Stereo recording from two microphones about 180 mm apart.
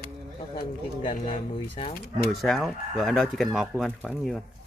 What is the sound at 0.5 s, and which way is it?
Speech, 25° left (ahead or behind).